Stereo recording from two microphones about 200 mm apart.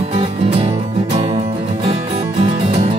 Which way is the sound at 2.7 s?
30° right (ahead or behind).